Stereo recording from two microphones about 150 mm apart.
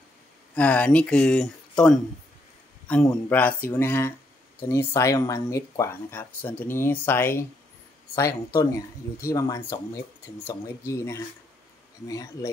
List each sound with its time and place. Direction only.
0.6 s speech: 10° left (ahead or behind)
10.9 s speech: 20° left (ahead or behind)